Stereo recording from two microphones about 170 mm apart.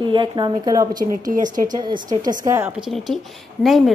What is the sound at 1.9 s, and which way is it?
Speech, 20° right (ahead or behind).